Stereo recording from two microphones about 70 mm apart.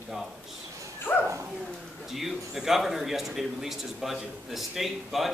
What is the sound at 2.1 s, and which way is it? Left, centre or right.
Speech, centre.